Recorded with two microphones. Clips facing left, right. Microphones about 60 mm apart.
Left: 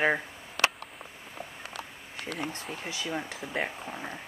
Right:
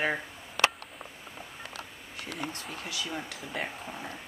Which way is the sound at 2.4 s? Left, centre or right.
Left.